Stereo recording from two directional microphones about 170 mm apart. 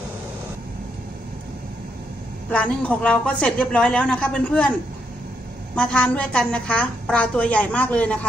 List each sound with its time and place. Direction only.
2.5 s a woman's voice: 10° left (ahead or behind)
5.8 s a woman's voice: 5° left (ahead or behind)